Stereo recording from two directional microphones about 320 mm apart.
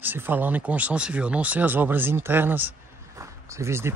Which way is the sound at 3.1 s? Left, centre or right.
Centre.